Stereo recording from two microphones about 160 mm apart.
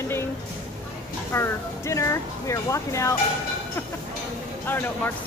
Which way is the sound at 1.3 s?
20° left (ahead or behind).